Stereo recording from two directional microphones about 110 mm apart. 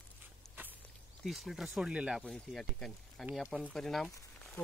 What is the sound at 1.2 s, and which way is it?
Speech, centre (ahead or behind).